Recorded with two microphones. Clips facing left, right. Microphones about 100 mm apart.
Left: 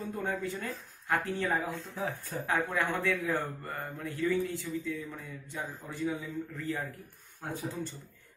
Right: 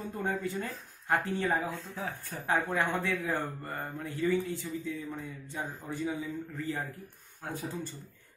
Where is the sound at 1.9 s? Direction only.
20° left (ahead or behind).